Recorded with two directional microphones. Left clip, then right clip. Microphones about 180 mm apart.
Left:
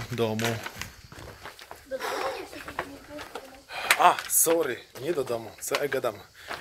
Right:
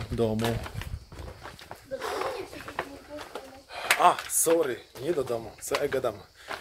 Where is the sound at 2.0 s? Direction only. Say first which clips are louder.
Left 1 dB; 15° right (ahead or behind).